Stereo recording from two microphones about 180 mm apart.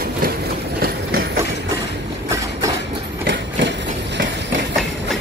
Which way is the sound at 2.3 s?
20° right (ahead or behind).